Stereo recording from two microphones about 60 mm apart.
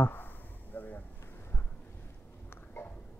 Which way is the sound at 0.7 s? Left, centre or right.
Left.